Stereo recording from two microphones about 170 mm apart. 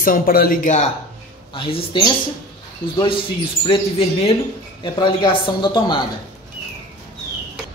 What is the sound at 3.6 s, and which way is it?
Speech, 35° left (ahead or behind).